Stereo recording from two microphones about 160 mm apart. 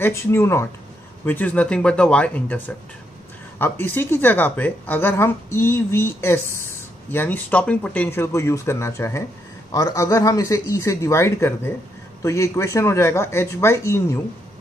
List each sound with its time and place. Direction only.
0.0 s a woman's voice: 15° left (ahead or behind)